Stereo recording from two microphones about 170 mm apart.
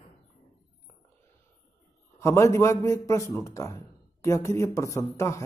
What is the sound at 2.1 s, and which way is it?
A man's voice, 15° left (ahead or behind).